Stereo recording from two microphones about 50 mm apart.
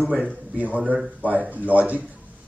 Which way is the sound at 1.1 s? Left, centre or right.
Right.